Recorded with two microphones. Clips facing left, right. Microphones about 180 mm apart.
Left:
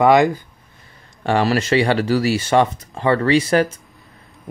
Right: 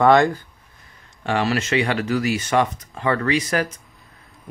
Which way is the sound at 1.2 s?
35° left (ahead or behind).